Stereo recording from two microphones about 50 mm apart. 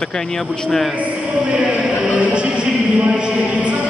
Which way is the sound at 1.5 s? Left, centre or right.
Right.